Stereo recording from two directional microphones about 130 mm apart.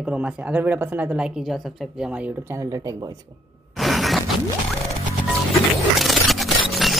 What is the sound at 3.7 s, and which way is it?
Mechanisms, centre (ahead or behind).